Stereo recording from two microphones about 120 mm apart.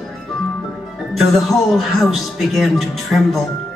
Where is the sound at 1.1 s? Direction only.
Centre (ahead or behind).